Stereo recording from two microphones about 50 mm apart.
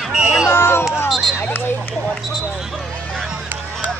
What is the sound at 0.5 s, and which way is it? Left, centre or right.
Hubbub, left.